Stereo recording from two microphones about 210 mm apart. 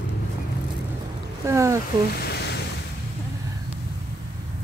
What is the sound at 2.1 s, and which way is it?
Boat, 50° left (ahead or behind).